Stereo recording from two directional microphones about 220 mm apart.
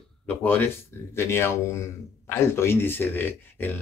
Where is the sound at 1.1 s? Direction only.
10° left (ahead or behind).